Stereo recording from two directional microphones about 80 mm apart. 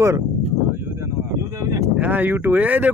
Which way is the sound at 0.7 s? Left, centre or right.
Right.